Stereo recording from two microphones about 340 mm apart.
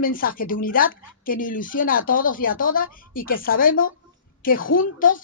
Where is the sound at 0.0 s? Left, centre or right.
Left.